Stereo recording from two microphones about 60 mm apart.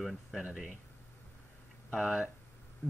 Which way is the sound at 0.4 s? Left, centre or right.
Right.